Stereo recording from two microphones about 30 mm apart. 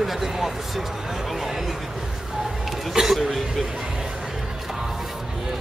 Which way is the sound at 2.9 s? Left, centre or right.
Centre.